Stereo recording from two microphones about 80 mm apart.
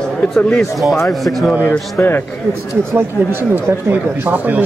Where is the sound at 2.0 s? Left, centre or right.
Left.